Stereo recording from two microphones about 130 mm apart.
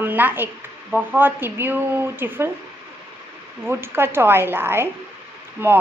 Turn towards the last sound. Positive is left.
turn(degrees=-15)  # may be behind; listen again after turning